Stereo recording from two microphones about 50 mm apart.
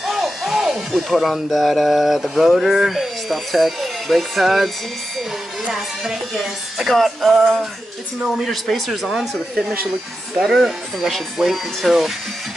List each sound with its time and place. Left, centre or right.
0.0 s speech: centre
6.9 s speech: centre
10.4 s speech: centre